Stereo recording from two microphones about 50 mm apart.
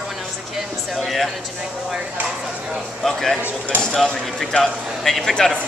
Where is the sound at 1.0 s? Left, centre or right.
Centre.